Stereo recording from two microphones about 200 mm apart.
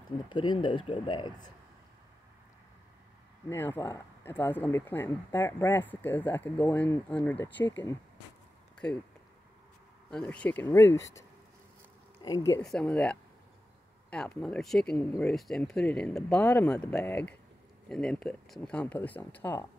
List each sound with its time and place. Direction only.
0.3 s speech: 20° left (ahead or behind)
3.4 s speech: 10° left (ahead or behind)
10.1 s speech: 5° left (ahead or behind)
12.2 s speech: 15° left (ahead or behind)
12.6 s speech: 5° left (ahead or behind)